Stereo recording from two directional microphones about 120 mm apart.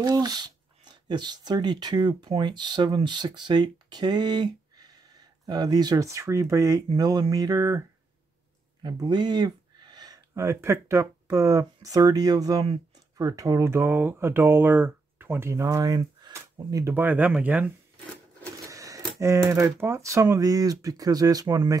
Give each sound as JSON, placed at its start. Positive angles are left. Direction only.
{"t": 0.0, "sound": "speech", "side_deg": -35}
{"t": 8.8, "sound": "speech", "side_deg": -35}
{"t": 16.3, "sound": "speech", "side_deg": -20}
{"t": 18.7, "sound": "speech", "side_deg": -25}